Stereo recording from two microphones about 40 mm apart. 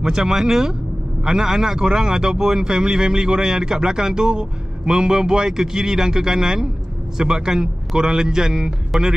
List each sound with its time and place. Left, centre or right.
0.0 s speech: centre